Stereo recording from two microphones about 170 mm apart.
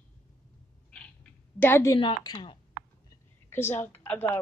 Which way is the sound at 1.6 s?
15° left (ahead or behind).